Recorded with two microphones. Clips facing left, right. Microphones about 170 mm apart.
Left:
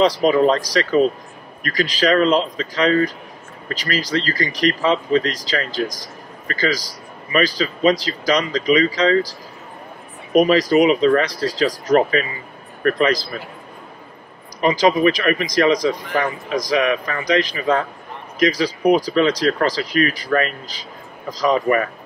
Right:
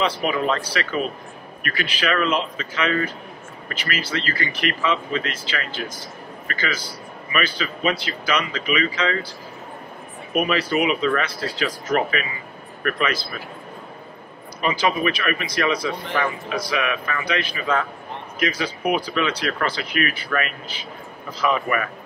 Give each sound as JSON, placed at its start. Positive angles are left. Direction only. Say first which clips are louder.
{"t": 0.0, "sound": "speech", "louder": "left 8 dB", "side_deg": 35}
{"t": 10.3, "sound": "speech", "louder": "left 8 dB", "side_deg": 35}
{"t": 14.6, "sound": "speech", "louder": "left 6 dB", "side_deg": 35}